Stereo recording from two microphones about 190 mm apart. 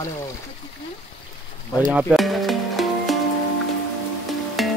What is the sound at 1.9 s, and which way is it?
Speech, centre (ahead or behind).